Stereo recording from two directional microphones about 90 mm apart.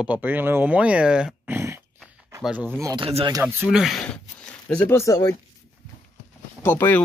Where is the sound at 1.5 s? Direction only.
30° right (ahead or behind).